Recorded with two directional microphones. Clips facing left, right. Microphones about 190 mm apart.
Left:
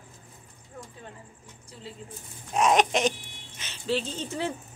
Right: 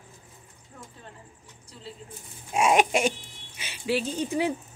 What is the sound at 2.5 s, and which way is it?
Speech, 10° right (ahead or behind).